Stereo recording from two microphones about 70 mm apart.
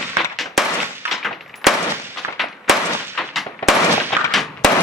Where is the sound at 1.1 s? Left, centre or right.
Centre.